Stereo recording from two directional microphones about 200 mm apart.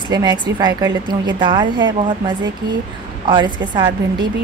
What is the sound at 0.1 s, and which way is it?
A woman's voice, 20° right (ahead or behind).